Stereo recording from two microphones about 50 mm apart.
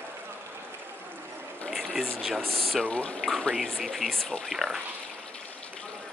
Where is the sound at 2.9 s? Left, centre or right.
Left.